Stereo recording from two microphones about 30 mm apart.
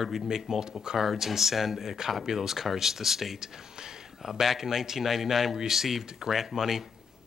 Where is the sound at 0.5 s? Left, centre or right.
Centre.